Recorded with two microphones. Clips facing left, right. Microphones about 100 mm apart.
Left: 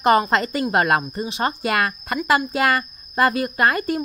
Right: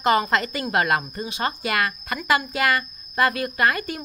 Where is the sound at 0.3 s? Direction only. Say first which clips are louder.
Left 3 dB; 35° left (ahead or behind).